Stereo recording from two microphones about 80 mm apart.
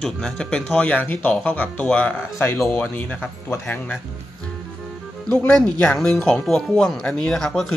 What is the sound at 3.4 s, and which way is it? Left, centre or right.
Speech, left.